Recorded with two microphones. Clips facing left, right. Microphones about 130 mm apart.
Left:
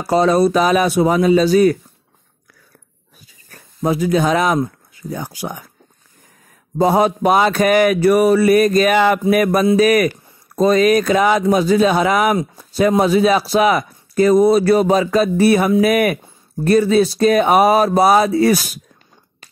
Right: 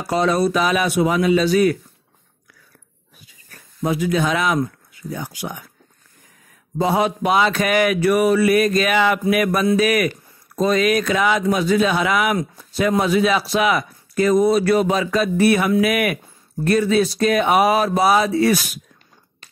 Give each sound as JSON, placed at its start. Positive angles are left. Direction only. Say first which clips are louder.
{"t": 0.0, "sound": "speech", "louder": "left 5 dB", "side_deg": 35}
{"t": 3.4, "sound": "speech", "louder": "left 3 dB", "side_deg": 40}
{"t": 6.8, "sound": "speech", "louder": "left 5 dB", "side_deg": 40}